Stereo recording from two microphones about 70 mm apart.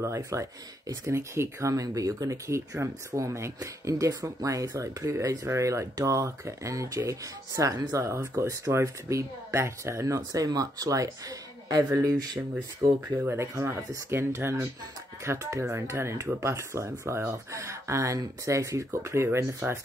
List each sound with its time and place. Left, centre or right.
0.0 s speech: right
8.0 s speech: right
13.2 s speech: right